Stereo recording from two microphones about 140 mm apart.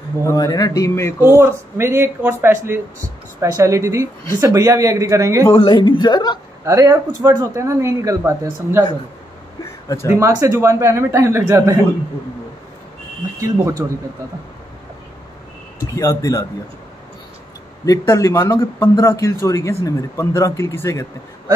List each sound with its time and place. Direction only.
0.3 s speech: 25° left (ahead or behind)
1.2 s speech: 20° right (ahead or behind)
5.5 s a man's voice: 40° left (ahead or behind)
6.6 s speech: 25° right (ahead or behind)
10.0 s speech: 20° right (ahead or behind)
13.4 s speech: 20° right (ahead or behind)
15.9 s speech: 25° left (ahead or behind)
17.8 s speech: 25° left (ahead or behind)